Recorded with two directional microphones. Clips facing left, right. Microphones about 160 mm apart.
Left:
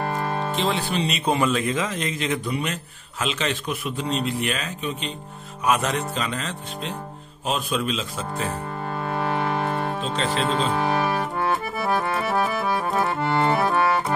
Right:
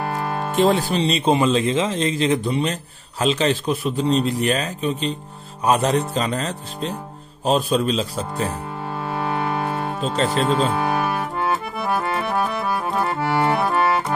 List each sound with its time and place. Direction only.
0.0 s music: 5° right (ahead or behind)
0.6 s speech: 45° right (ahead or behind)
8.8 s music: 5° right (ahead or behind)
10.1 s speech: 40° right (ahead or behind)
10.4 s accordion: centre (ahead or behind)